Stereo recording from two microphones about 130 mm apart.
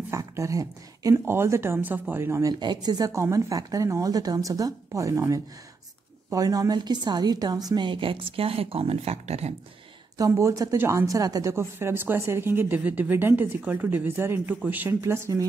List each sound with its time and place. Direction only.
0.1 s a woman's voice: 25° right (ahead or behind)
2.6 s a woman's voice: 35° right (ahead or behind); by 9.5 s 55° right (ahead or behind)
10.1 s a woman's voice: 25° right (ahead or behind)